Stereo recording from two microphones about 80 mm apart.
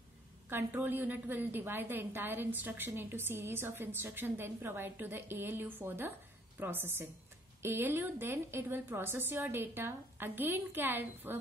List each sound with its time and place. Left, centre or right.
0.5 s a woman's voice: right